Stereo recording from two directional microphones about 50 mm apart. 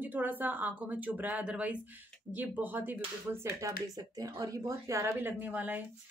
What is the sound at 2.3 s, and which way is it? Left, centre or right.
Speech, right.